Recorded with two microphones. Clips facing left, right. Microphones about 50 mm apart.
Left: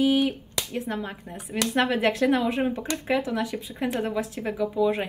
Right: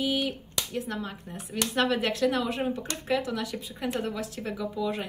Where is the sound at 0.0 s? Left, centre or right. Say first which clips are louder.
Left 7 dB; left.